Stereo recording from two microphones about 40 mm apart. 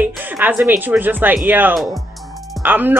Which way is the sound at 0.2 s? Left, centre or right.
Right.